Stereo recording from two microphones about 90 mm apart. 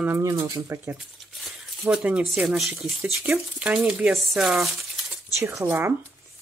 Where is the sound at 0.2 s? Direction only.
40° right (ahead or behind).